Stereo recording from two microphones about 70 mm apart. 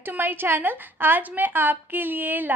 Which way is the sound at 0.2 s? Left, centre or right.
Right.